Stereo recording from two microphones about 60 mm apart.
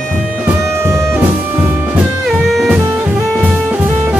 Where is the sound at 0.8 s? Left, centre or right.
Right.